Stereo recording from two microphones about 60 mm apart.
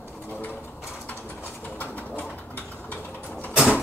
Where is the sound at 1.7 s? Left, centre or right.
Left.